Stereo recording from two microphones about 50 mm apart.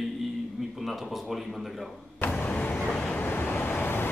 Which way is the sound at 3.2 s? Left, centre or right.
Left.